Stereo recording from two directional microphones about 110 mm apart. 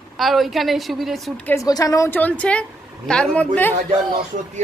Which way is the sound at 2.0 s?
15° left (ahead or behind).